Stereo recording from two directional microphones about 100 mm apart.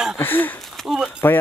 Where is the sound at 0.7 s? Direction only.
5° right (ahead or behind).